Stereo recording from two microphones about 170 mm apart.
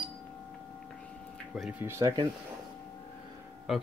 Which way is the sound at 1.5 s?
5° right (ahead or behind).